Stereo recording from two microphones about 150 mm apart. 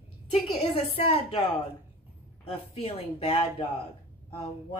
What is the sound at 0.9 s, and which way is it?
Speech, 40° left (ahead or behind).